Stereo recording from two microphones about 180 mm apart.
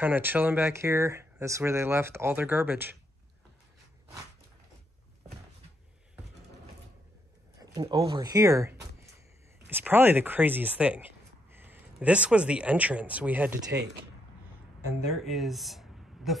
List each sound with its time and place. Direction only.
0.0 s speech: 10° right (ahead or behind)
7.7 s speech: 20° right (ahead or behind)
15.2 s a sound: centre (ahead or behind)